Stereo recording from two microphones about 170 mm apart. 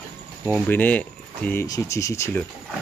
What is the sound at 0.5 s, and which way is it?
Speech, 10° left (ahead or behind).